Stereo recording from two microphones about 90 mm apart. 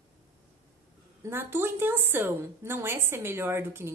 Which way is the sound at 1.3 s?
25° right (ahead or behind).